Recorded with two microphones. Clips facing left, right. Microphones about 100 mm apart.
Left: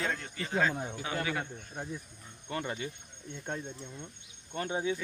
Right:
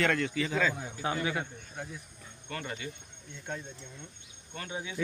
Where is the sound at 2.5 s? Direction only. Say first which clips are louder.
Left 3 dB; 25° left (ahead or behind).